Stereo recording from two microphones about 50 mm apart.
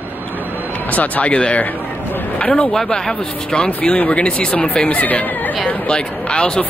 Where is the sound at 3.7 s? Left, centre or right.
Left.